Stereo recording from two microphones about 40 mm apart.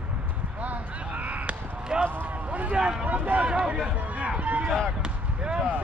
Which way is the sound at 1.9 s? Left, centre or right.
Right.